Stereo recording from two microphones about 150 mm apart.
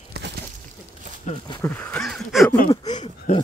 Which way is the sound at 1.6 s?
10° left (ahead or behind).